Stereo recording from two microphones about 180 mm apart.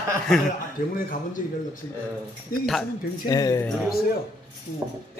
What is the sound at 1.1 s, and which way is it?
A man's voice, 50° left (ahead or behind).